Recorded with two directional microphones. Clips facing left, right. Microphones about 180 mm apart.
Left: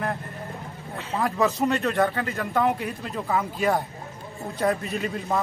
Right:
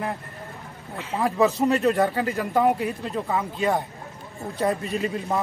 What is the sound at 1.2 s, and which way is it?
A man's voice, 5° right (ahead or behind).